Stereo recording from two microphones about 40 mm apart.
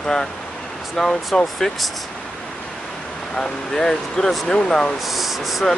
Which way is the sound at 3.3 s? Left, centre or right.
Centre.